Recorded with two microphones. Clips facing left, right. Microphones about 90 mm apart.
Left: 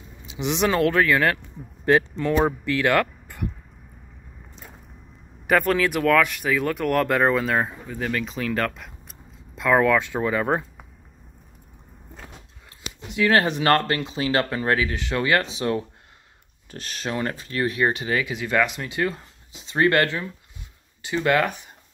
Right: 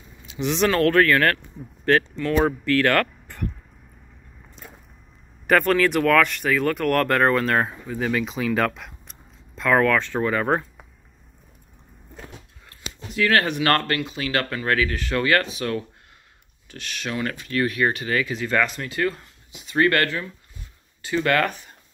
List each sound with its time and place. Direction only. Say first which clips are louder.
0.3 s speech: right 1 dB; 20° left (ahead or behind)
5.5 s speech: right 2 dB; 5° left (ahead or behind)
13.1 s speech: left 1 dB; 20° left (ahead or behind)
16.7 s speech: left 1 dB; 35° left (ahead or behind); by 21.7 s 15° left (ahead or behind)